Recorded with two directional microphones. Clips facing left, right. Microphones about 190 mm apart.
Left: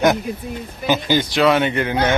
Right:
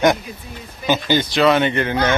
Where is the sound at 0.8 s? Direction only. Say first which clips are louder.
Even; 10° left (ahead or behind).